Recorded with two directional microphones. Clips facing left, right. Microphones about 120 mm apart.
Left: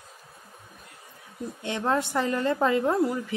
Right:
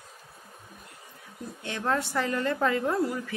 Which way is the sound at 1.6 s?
20° left (ahead or behind).